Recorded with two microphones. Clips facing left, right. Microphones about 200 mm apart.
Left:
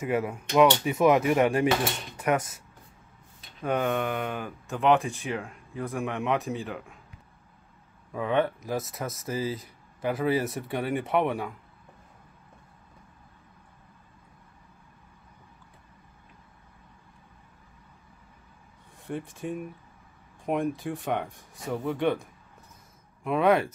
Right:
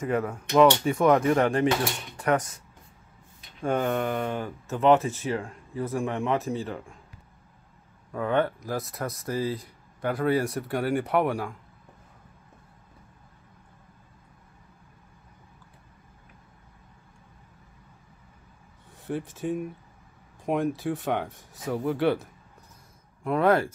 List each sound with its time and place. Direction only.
0.0 s speech: 5° left (ahead or behind)
3.6 s speech: centre (ahead or behind)
8.1 s speech: 10° left (ahead or behind)
8.4 s speech: centre (ahead or behind)
19.0 s speech: 5° right (ahead or behind)